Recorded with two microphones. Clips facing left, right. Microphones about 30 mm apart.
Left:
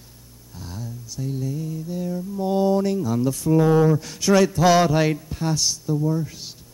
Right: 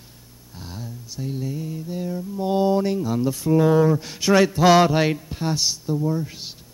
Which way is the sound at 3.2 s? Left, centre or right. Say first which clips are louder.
Even; centre.